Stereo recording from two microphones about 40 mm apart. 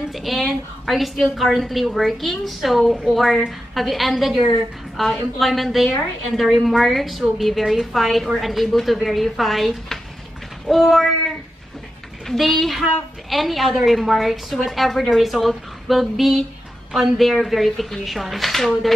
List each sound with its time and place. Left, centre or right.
0.1 s a woman's voice: centre
10.7 s a woman's voice: centre